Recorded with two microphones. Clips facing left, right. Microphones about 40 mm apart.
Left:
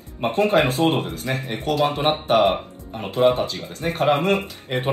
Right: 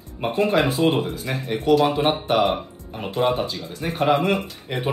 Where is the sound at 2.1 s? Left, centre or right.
Left.